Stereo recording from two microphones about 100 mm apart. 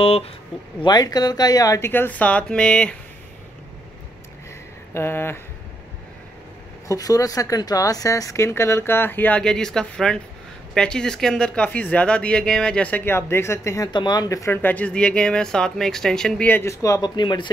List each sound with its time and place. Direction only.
0.0 s speech: 75° left (ahead or behind)
0.7 s speech: 45° left (ahead or behind)
1.9 s speech: 20° left (ahead or behind)
4.9 s speech: 25° left (ahead or behind)
6.9 s speech: 35° left (ahead or behind)
13.9 s speech: 45° left (ahead or behind)
14.4 s speech: 20° left (ahead or behind)
16.6 s speech: 35° left (ahead or behind)
17.1 s speech: 50° left (ahead or behind)